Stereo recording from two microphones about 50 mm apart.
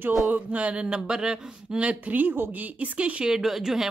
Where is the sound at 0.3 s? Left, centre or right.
Right.